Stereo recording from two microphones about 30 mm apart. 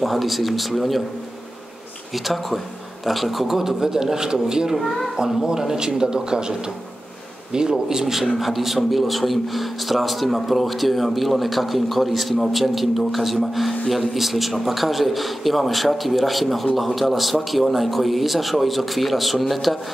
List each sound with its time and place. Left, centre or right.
0.0 s speech: centre
2.1 s a man's voice: centre; by 4.7 s right
4.7 s speech: centre
5.8 s speech: right
7.9 s a man's voice: centre